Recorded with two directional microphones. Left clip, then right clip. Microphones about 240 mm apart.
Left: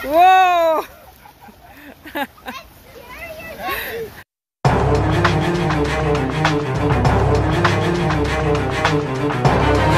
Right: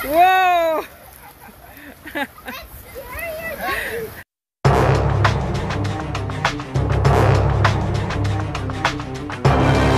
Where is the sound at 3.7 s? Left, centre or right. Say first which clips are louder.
Even; centre.